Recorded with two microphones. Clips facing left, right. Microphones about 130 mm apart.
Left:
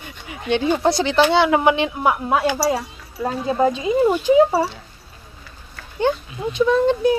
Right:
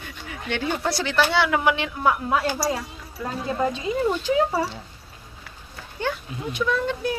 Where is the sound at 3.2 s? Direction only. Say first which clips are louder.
Left 6 dB; 25° left (ahead or behind).